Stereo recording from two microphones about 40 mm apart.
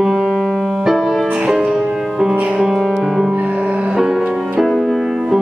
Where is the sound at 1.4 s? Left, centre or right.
Centre.